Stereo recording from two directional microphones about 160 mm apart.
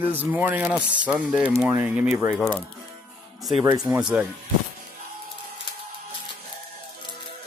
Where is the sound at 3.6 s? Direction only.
25° right (ahead or behind).